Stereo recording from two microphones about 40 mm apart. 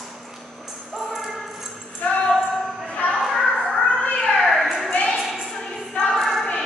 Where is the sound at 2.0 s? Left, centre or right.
Left.